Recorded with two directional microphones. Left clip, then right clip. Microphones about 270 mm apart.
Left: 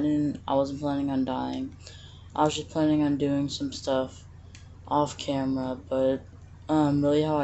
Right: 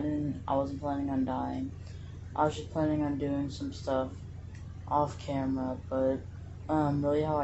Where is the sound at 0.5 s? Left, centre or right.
Left.